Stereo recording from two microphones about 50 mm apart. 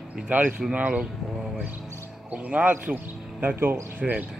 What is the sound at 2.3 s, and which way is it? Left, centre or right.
Speech, right.